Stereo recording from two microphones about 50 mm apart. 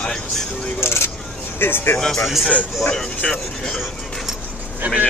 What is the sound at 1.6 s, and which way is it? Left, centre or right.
Speech, left.